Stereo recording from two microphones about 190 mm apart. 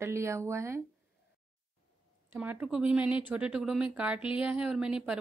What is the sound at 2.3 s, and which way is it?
Speech, 10° right (ahead or behind).